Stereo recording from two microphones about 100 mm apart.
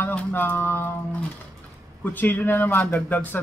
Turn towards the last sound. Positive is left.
turn(degrees=20)  # may be behind; listen again after turning